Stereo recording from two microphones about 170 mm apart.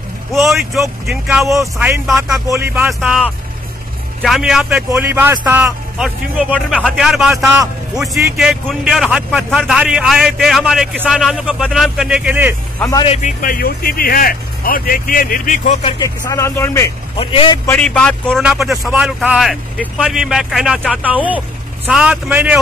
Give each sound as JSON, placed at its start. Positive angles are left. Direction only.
{"t": 0.3, "sound": "a man's voice", "side_deg": 0}
{"t": 1.5, "sound": "a man's voice", "side_deg": -15}
{"t": 12.9, "sound": "a man's voice", "side_deg": 35}
{"t": 13.4, "sound": "speech", "side_deg": 60}
{"t": 16.0, "sound": "speech", "side_deg": 20}
{"t": 17.2, "sound": "a man's voice", "side_deg": 30}
{"t": 17.6, "sound": "a man's voice", "side_deg": 5}